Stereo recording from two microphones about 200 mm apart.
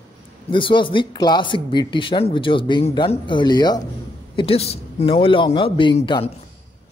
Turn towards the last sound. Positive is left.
turn(degrees=25)  # may be behind; listen again after turning